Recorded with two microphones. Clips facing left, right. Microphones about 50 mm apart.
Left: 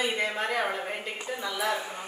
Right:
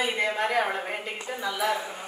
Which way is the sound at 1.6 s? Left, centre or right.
Centre.